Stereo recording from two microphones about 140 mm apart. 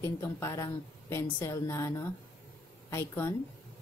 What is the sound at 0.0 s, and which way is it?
Speech, 20° left (ahead or behind).